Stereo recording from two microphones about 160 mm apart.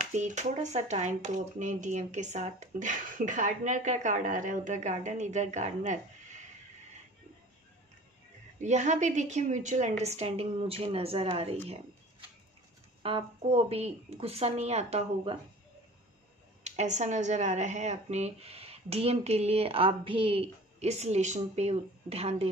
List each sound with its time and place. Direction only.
0.0 s speech: 50° right (ahead or behind)
8.5 s speech: 50° right (ahead or behind)
13.0 s speech: 40° right (ahead or behind)
16.6 s speech: 45° right (ahead or behind)